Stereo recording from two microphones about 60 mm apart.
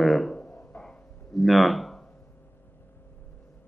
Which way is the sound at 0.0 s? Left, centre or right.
Centre.